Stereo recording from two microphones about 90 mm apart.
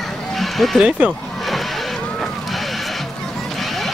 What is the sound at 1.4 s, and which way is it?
Music, centre (ahead or behind).